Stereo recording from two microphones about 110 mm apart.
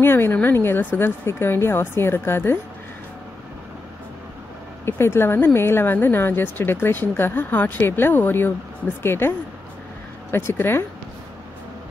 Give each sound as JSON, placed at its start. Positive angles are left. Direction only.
{"t": 0.0, "sound": "speech", "side_deg": 20}
{"t": 4.8, "sound": "speech", "side_deg": 20}
{"t": 10.3, "sound": "speech", "side_deg": 20}